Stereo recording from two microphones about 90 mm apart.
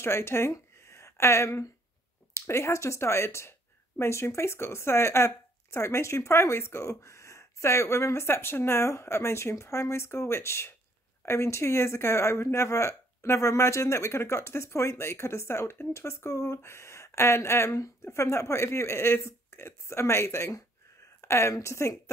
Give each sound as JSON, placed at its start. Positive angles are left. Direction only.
{"t": 0.0, "sound": "a woman's voice", "side_deg": 30}